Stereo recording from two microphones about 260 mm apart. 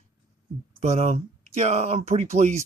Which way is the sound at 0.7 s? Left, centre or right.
Right.